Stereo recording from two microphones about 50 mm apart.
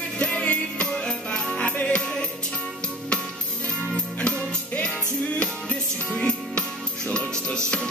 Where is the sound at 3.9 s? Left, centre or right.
Left.